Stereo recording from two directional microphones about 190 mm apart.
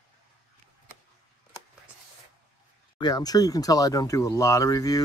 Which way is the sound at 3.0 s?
20° left (ahead or behind).